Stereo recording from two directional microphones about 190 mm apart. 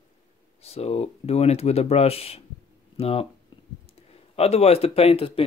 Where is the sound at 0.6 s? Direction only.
35° left (ahead or behind).